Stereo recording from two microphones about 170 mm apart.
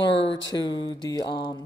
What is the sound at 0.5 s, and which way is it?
Speech, 25° left (ahead or behind).